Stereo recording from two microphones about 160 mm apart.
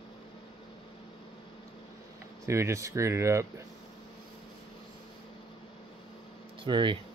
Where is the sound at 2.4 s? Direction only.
20° right (ahead or behind).